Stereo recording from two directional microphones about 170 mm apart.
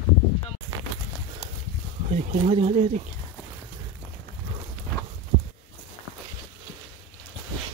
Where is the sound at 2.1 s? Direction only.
35° right (ahead or behind).